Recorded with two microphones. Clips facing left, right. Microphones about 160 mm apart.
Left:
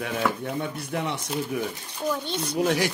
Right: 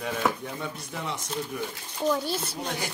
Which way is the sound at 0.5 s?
65° left (ahead or behind).